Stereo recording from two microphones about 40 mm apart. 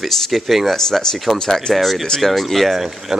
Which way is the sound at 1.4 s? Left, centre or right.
Centre.